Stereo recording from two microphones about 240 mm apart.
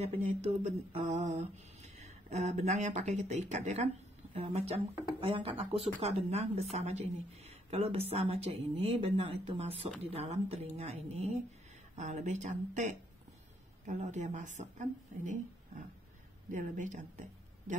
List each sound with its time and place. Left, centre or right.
0.0 s mantra: right
13.8 s speech: right